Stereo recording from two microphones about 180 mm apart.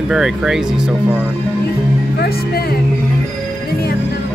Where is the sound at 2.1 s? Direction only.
55° left (ahead or behind).